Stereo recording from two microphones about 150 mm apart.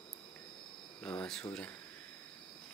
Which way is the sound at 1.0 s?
10° left (ahead or behind).